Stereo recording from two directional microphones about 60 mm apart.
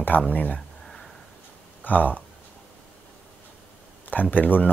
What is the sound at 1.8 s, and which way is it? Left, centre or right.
Speech, left.